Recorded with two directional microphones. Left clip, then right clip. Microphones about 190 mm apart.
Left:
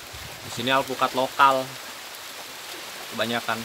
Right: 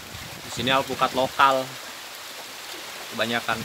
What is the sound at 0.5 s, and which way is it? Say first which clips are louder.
Speech: even; centre (ahead or behind).